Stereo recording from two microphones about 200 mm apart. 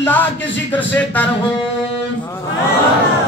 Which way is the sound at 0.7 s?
10° left (ahead or behind).